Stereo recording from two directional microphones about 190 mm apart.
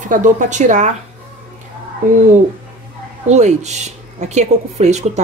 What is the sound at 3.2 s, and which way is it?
Speech, 35° right (ahead or behind).